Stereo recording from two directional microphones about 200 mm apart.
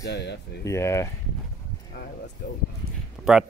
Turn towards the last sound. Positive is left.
turn(degrees=0)  # may be behind; listen again after turning